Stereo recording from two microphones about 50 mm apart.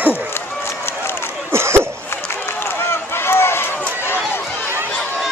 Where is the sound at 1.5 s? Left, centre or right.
Right.